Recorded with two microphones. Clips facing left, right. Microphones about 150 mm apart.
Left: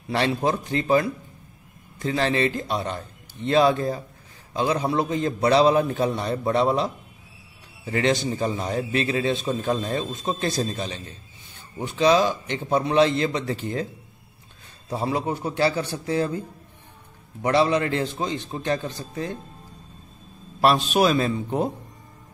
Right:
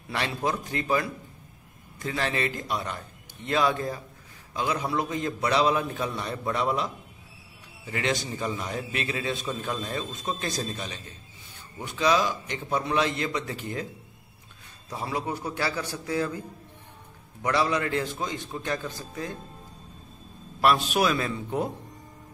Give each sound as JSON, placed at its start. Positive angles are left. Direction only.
{"t": 0.1, "sound": "a man's voice", "side_deg": 30}
{"t": 14.9, "sound": "a man's voice", "side_deg": 30}
{"t": 17.4, "sound": "a man's voice", "side_deg": 25}
{"t": 20.6, "sound": "a man's voice", "side_deg": 25}